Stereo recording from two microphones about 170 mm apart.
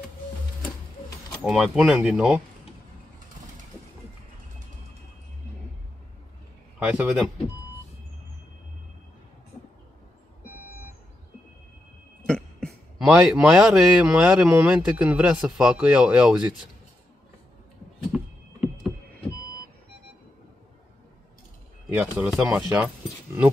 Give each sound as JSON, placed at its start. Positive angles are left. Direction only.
{"t": 1.4, "sound": "speech", "side_deg": -5}
{"t": 6.8, "sound": "speech", "side_deg": -5}
{"t": 12.3, "sound": "a sound", "side_deg": 5}
{"t": 13.1, "sound": "speech", "side_deg": -5}
{"t": 18.1, "sound": "vehicle", "side_deg": 0}
{"t": 21.8, "sound": "speech", "side_deg": -10}